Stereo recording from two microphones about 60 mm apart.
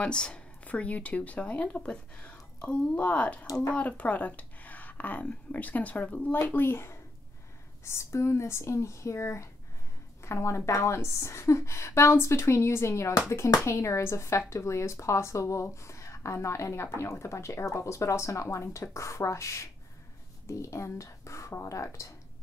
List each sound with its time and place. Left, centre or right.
0.0 s a woman's voice: centre
6.5 s a woman's voice: left